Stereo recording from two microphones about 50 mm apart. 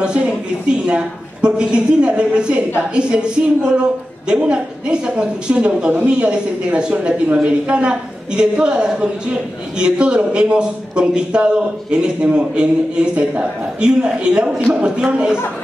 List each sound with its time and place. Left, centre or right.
0.0 s a man's voice: right